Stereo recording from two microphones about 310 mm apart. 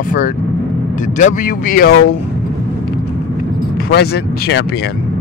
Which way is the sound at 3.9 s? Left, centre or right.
Left.